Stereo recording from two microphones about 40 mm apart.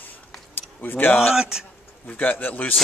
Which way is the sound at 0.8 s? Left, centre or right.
Left.